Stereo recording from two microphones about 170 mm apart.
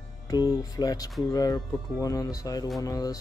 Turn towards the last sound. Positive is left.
turn(degrees=20)  # may be behind; listen again after turning